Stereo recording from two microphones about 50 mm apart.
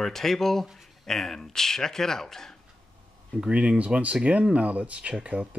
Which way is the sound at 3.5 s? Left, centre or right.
Right.